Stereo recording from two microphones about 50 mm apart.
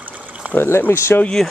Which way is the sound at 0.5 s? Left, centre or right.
Left.